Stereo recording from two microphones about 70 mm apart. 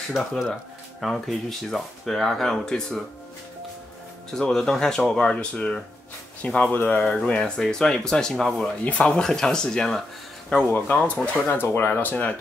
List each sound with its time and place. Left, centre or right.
0.2 s speech: centre
4.3 s speech: centre
8.8 s speech: centre
10.5 s speech: centre
11.4 s speech: left